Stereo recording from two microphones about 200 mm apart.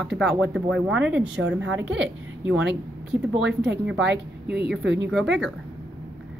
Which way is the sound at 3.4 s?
60° right (ahead or behind).